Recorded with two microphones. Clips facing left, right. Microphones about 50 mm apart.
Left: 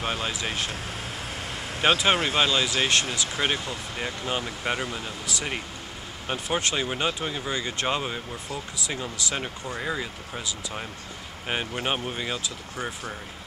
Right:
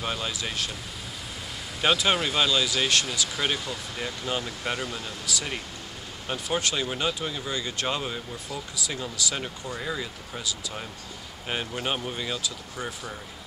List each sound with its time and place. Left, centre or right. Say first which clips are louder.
0.0 s speech: left 2 dB; left
1.8 s speech: left 2 dB; left
5.2 s speech: right 1 dB; left
6.2 s speech: left 1 dB; centre
11.4 s speech: left 2 dB; centre